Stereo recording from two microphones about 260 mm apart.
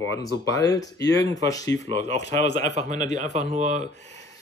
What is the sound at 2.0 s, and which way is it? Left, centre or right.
Speech, left.